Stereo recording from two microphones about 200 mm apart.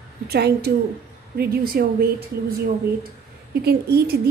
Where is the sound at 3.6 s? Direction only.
50° right (ahead or behind).